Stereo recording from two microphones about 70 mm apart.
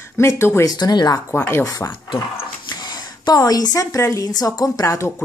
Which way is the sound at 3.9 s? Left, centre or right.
Left.